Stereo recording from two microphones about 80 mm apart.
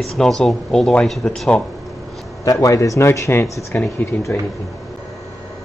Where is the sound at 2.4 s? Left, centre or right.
Left.